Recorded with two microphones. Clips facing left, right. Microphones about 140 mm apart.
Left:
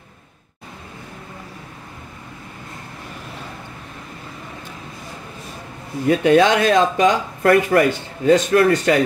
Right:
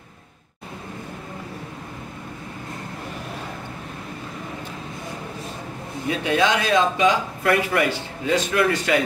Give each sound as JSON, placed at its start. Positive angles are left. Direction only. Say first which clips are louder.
{"t": 6.0, "sound": "speech", "louder": "left 7 dB", "side_deg": 50}